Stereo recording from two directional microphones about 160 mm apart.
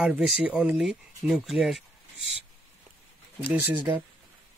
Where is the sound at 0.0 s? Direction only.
5° right (ahead or behind).